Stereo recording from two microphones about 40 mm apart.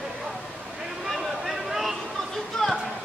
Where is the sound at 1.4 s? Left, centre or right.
Centre.